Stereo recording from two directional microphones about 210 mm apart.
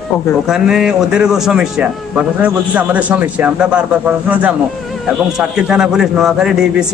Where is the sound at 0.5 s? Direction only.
5° right (ahead or behind).